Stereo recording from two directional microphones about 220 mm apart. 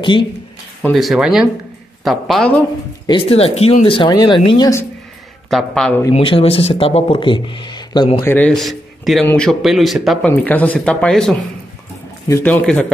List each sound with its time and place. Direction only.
0.0 s speech: 20° left (ahead or behind)
0.8 s a man's voice: centre (ahead or behind)
3.1 s speech: 25° left (ahead or behind)
5.5 s a man's voice: centre (ahead or behind)
6.1 s speech: 25° left (ahead or behind)
8.2 s a man's voice: 10° left (ahead or behind)